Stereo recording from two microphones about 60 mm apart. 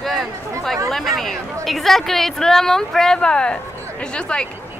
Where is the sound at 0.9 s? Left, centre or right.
Centre.